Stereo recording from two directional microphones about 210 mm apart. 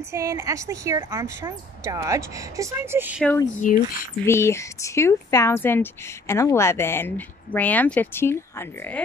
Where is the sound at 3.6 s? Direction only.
35° left (ahead or behind).